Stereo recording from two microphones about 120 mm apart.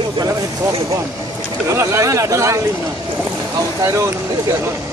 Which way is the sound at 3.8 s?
25° right (ahead or behind).